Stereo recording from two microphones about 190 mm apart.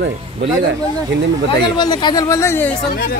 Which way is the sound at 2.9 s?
50° left (ahead or behind).